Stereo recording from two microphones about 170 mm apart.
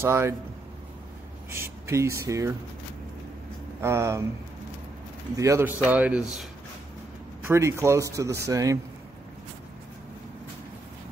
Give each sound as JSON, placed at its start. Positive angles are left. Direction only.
{"t": 0.0, "sound": "speech", "side_deg": -15}
{"t": 1.5, "sound": "speech", "side_deg": -15}
{"t": 3.8, "sound": "speech", "side_deg": -15}
{"t": 5.3, "sound": "speech", "side_deg": -20}
{"t": 7.4, "sound": "speech", "side_deg": -15}